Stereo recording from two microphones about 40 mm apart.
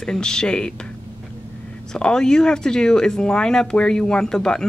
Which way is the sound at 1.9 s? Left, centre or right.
Centre.